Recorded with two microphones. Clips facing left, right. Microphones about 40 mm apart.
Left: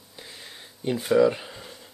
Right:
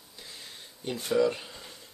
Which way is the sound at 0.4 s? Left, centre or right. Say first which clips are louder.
Left 4 dB; centre.